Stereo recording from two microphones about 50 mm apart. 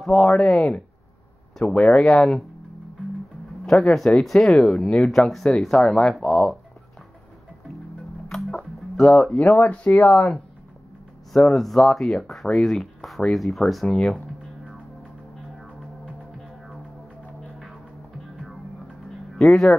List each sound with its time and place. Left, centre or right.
0.0 s speech: centre
3.6 s speech: centre
8.0 s music: centre
9.6 s speech: left
11.3 s speech: centre
15.6 s music: centre
18.2 s music: centre